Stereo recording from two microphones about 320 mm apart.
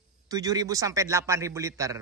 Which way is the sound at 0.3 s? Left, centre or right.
Centre.